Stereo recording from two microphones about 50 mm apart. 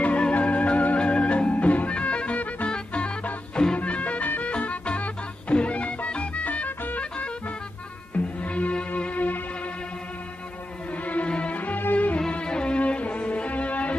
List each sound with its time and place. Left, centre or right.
0.0 s music: left
10.9 s music: left
12.2 s music: centre